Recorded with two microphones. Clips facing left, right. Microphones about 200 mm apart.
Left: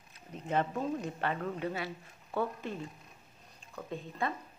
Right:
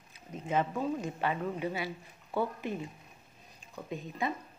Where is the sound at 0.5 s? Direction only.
5° right (ahead or behind).